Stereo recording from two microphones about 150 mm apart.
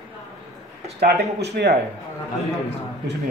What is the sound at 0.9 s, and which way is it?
Speech, 90° right.